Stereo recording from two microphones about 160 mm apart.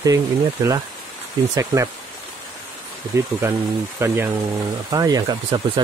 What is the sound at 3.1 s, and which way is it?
Speech, 15° right (ahead or behind).